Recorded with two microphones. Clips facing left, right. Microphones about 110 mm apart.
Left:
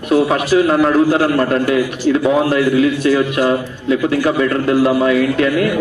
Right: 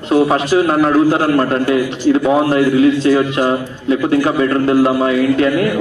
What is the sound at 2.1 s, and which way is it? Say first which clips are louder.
A man's voice: right 2 dB; 30° right (ahead or behind).